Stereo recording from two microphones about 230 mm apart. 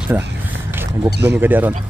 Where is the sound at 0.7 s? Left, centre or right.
Centre.